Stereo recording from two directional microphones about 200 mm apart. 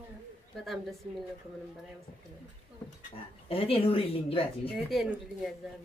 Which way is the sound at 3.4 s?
30° left (ahead or behind).